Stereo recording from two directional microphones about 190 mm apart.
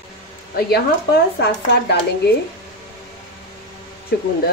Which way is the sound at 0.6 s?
55° left (ahead or behind).